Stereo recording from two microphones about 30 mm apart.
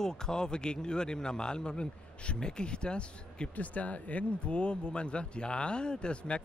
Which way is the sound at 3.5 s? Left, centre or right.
Left.